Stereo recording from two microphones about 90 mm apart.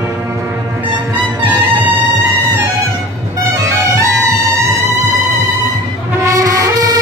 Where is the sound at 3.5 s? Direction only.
35° right (ahead or behind).